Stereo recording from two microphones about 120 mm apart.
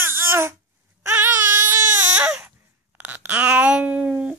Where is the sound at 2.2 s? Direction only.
5° right (ahead or behind).